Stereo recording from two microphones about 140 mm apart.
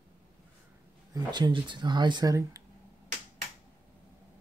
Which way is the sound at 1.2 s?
30° right (ahead or behind).